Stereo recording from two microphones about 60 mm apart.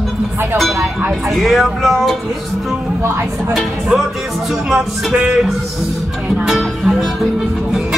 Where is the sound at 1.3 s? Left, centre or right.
Centre.